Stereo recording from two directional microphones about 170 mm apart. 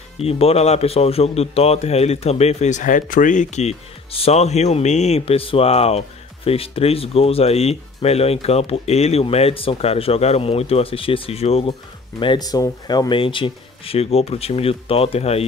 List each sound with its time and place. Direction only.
0.2 s a man's voice: 35° left (ahead or behind)
12.2 s a man's voice: 25° left (ahead or behind)